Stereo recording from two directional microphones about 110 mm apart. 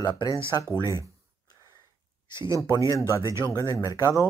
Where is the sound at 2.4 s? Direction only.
25° right (ahead or behind).